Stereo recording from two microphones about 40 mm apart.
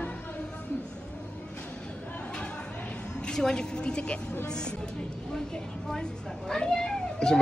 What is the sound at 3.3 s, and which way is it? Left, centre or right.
Speech, centre.